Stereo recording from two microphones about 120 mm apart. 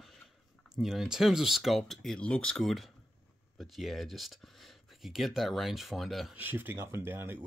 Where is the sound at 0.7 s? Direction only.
5° right (ahead or behind).